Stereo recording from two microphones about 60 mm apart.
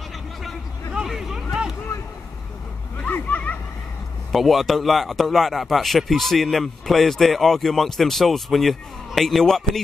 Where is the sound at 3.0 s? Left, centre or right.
Left.